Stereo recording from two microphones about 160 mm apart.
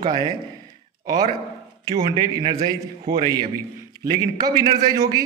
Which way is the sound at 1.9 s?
25° right (ahead or behind).